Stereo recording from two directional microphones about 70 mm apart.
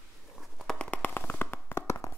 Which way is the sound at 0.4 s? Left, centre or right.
Centre.